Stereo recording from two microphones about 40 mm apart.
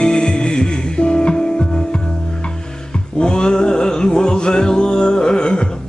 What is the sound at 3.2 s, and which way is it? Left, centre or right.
Music, centre.